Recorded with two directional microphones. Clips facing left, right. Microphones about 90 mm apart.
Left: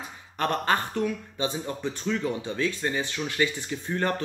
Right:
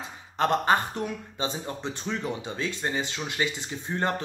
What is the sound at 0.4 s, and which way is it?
Speech, 20° right (ahead or behind).